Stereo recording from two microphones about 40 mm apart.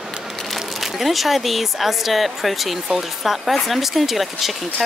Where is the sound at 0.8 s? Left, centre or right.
Centre.